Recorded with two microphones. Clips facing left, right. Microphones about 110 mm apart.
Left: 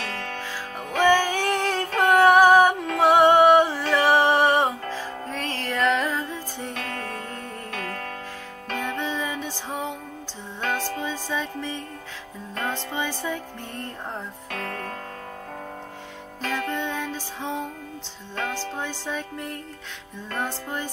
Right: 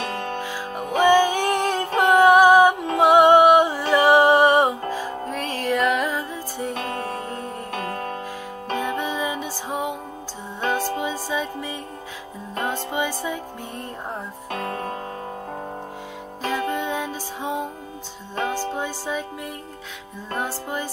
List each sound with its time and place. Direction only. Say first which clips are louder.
0.0 s music: right 5 dB; 15° right (ahead or behind)
16.4 s music: right 3 dB; 15° right (ahead or behind)